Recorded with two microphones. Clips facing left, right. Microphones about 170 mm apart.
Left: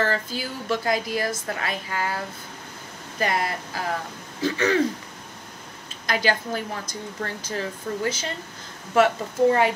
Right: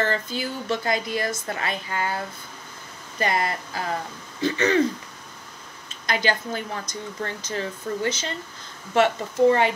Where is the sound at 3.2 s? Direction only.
Centre (ahead or behind).